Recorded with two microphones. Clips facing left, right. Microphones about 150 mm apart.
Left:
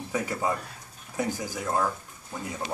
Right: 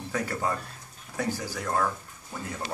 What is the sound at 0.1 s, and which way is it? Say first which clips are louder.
A man's voice: left 1 dB; 15° left (ahead or behind).